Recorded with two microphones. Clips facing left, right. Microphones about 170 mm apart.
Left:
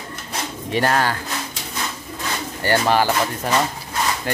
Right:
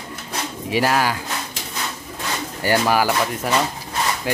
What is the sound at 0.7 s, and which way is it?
Speech, 5° right (ahead or behind).